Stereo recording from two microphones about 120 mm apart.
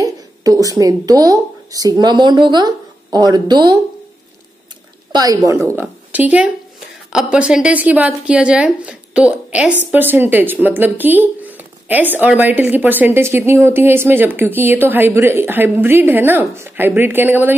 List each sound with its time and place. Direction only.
0.0 s speech: 30° right (ahead or behind)
5.1 s a woman's voice: 30° right (ahead or behind)
6.1 s speech: 10° right (ahead or behind)